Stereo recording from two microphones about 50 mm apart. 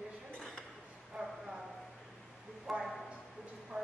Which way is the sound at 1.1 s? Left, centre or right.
Centre.